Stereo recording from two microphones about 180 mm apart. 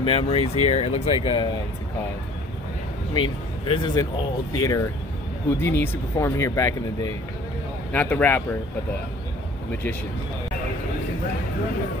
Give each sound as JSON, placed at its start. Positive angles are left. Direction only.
{"t": 0.0, "sound": "speech", "side_deg": 30}
{"t": 3.1, "sound": "speech", "side_deg": 30}